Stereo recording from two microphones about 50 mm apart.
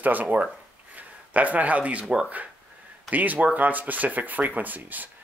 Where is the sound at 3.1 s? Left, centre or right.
Right.